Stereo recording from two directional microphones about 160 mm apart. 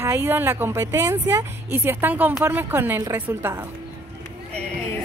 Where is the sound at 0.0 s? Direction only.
15° right (ahead or behind).